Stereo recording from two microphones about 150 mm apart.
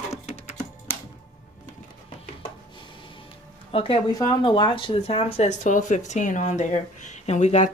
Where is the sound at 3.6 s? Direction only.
40° left (ahead or behind).